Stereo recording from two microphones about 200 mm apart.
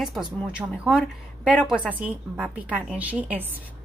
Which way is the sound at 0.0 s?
Centre (ahead or behind).